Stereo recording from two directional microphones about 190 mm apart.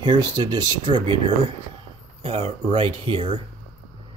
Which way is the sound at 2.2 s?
30° right (ahead or behind).